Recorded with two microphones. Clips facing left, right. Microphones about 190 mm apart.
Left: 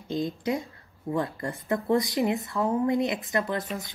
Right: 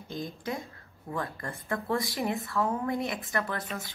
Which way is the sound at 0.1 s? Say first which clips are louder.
Left 7 dB; 20° left (ahead or behind).